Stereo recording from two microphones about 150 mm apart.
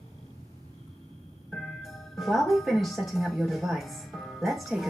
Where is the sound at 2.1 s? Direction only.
Centre (ahead or behind).